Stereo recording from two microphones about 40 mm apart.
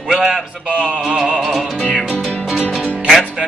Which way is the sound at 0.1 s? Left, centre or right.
Centre.